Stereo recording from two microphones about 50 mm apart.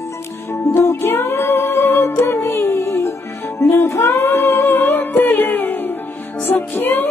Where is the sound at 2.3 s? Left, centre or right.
Left.